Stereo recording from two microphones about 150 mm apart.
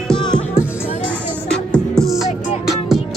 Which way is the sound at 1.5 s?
Centre (ahead or behind).